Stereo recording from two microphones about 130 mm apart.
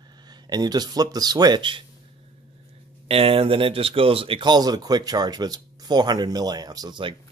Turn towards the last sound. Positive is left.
turn(degrees=-40)  # may be behind; listen again after turning